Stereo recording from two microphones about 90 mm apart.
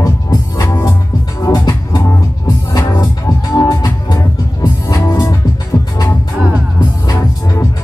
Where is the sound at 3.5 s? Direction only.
45° left (ahead or behind).